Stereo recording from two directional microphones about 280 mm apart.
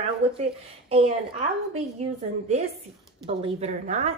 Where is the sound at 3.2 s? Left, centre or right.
Right.